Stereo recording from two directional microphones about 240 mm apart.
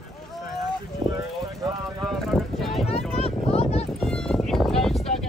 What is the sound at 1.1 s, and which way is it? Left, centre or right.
Vehicle, centre.